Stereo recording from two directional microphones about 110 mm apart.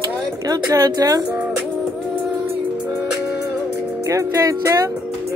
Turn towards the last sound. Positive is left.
turn(degrees=-30)  # may be behind; listen again after turning